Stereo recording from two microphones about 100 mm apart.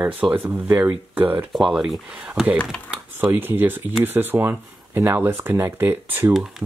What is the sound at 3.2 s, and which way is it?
Speech, 20° right (ahead or behind).